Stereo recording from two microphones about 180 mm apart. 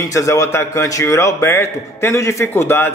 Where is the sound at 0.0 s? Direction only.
15° left (ahead or behind).